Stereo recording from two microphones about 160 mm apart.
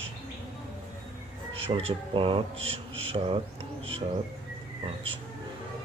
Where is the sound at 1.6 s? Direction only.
35° right (ahead or behind).